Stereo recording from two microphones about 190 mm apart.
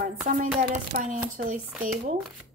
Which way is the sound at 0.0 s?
40° right (ahead or behind).